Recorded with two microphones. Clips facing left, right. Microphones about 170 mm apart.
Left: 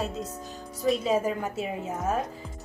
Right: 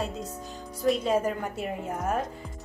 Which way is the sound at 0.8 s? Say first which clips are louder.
Even; centre (ahead or behind).